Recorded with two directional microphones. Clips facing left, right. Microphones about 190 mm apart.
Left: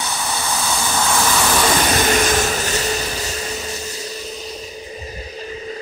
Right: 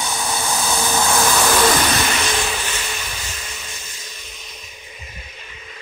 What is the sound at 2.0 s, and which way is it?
Vehicle, 45° left (ahead or behind).